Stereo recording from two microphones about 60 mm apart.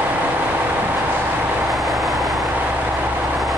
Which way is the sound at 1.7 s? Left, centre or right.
Centre.